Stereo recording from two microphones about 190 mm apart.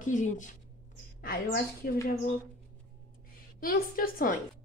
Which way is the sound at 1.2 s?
50° left (ahead or behind).